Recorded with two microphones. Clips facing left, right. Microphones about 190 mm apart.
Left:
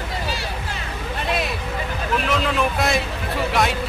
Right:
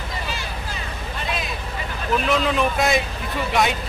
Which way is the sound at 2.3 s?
Centre (ahead or behind).